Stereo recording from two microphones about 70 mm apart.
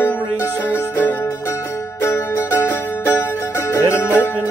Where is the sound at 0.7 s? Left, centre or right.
Left.